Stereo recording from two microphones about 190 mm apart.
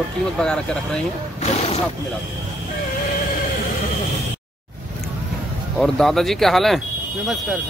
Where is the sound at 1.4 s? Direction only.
35° left (ahead or behind).